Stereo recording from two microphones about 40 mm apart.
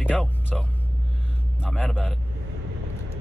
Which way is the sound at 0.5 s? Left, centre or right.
Centre.